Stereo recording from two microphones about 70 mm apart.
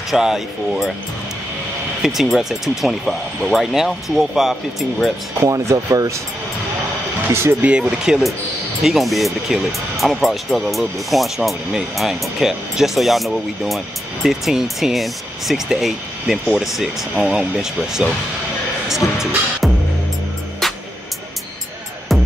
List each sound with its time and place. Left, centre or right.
0.1 s speech: centre
2.0 s speech: centre
5.4 s speech: right
7.6 s speech: centre
8.8 s speech: centre
20.6 s music: centre
22.1 s music: centre